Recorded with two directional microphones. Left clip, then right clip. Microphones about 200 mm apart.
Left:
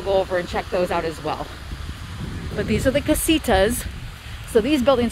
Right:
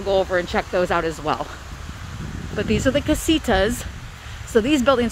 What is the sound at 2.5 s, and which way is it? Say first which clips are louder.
Speech: even; 5° right (ahead or behind).